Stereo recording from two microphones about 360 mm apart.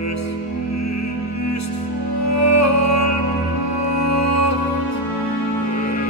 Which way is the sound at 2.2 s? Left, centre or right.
Left.